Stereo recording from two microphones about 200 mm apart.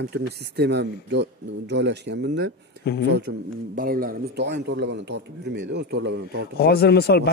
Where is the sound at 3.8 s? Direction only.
45° right (ahead or behind).